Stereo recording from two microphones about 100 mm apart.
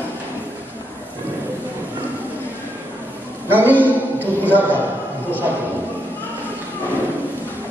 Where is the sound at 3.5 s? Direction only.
20° right (ahead or behind).